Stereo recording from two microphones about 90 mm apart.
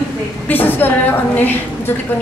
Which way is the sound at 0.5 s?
20° left (ahead or behind).